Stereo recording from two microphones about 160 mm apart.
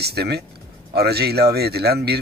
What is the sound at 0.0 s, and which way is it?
A man's voice, 90° right.